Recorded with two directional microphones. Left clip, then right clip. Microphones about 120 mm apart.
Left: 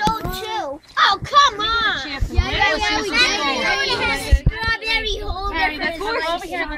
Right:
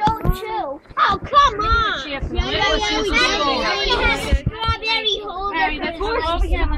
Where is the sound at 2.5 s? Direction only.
20° left (ahead or behind).